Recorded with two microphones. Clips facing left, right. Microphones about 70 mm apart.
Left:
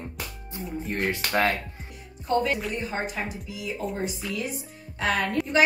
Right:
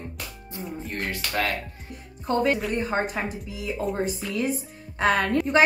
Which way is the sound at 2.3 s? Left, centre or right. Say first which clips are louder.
Right 2 dB; right.